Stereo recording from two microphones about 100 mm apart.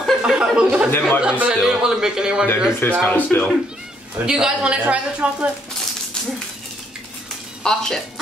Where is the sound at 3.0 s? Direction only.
20° left (ahead or behind).